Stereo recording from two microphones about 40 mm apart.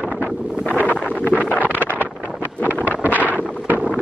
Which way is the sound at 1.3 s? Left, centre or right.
Right.